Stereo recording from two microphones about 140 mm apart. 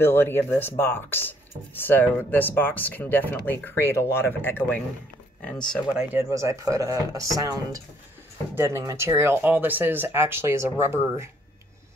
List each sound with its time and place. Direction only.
0.0 s speech: 15° left (ahead or behind)
5.9 s speech: 20° right (ahead or behind)